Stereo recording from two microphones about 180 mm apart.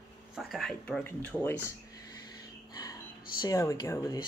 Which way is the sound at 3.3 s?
20° left (ahead or behind).